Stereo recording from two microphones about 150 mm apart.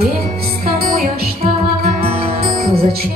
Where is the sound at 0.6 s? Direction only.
85° right.